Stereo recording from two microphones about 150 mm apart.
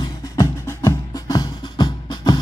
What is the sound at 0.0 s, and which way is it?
Music, 25° left (ahead or behind).